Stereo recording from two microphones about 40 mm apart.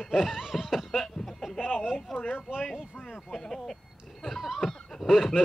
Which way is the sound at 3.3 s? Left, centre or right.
Centre.